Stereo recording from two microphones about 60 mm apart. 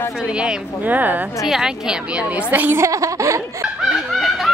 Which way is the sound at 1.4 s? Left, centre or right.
Centre.